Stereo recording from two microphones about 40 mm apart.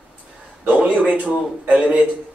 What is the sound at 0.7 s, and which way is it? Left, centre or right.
Speech, right.